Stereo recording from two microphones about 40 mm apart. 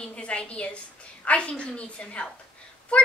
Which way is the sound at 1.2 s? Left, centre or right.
Left.